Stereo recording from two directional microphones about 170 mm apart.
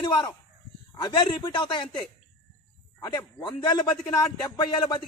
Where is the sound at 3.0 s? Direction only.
25° left (ahead or behind).